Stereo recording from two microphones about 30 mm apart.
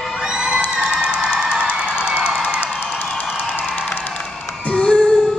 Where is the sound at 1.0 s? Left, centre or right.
Right.